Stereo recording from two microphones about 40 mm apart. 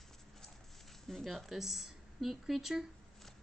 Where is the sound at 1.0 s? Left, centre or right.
Centre.